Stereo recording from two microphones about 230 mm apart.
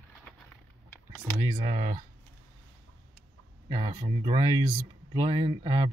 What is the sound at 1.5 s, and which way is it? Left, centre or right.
Speech, right.